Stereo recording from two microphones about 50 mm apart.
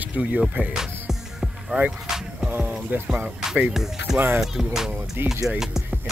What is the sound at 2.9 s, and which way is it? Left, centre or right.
Speech, right.